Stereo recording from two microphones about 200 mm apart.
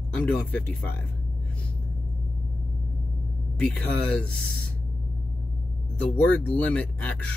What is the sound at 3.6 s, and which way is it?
Speech, 5° left (ahead or behind).